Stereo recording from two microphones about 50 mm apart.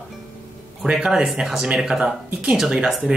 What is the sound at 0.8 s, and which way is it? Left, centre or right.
Speech, centre.